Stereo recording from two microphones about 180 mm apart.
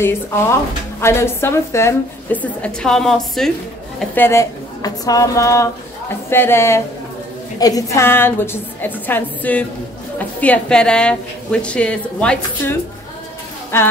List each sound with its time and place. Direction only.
1.0 s a woman's voice: 15° left (ahead or behind)